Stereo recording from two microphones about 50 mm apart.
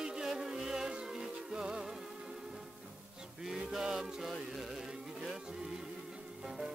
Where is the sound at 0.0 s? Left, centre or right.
Centre.